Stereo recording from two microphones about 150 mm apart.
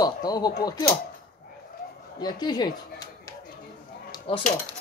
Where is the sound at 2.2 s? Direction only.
30° left (ahead or behind).